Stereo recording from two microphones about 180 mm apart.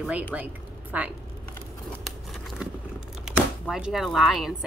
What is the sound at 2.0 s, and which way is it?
Scissors, centre (ahead or behind).